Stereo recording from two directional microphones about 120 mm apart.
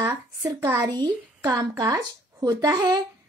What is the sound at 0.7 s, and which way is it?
A woman's voice, 35° right (ahead or behind).